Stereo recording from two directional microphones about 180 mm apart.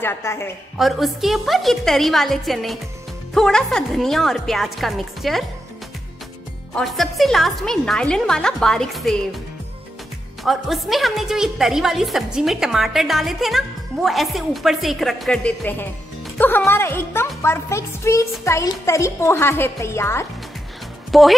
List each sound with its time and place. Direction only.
0.0 s a woman's voice: 15° left (ahead or behind)
0.7 s a woman's voice: centre (ahead or behind)
6.7 s a woman's voice: centre (ahead or behind)
10.4 s a woman's voice: centre (ahead or behind)
21.1 s speech: centre (ahead or behind)